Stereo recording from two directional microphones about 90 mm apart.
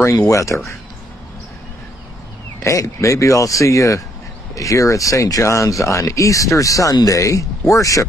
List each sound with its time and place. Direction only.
0.0 s speech: 25° left (ahead or behind)
0.3 s speech: 35° left (ahead or behind)
2.6 s speech: 35° left (ahead or behind)